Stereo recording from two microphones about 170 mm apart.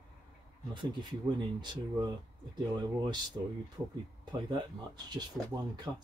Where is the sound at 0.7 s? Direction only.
25° right (ahead or behind).